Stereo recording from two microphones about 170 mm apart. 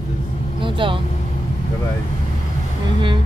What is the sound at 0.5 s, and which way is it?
Vehicle, 30° right (ahead or behind).